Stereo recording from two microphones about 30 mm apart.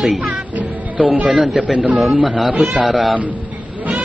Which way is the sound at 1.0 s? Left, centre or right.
Right.